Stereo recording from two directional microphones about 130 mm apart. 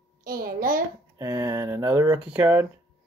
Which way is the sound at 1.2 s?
20° right (ahead or behind).